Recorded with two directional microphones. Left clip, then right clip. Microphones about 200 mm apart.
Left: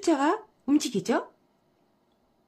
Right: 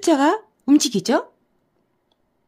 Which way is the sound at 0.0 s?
40° right (ahead or behind).